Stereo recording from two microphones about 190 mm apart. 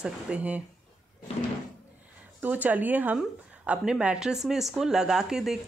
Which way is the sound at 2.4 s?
10° right (ahead or behind).